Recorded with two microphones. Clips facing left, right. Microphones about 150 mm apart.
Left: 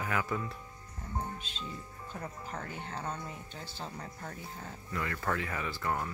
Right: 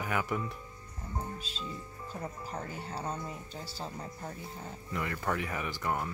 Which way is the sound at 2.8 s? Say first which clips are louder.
Right 2 dB; 5° right (ahead or behind).